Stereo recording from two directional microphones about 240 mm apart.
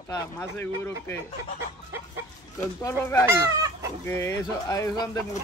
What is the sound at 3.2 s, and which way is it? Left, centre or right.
Speech, centre.